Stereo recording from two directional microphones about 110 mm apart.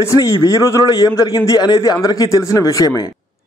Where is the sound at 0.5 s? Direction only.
30° left (ahead or behind).